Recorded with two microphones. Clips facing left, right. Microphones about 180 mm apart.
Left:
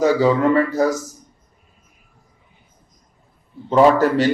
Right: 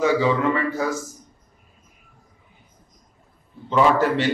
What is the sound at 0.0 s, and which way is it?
Speech, 40° left (ahead or behind).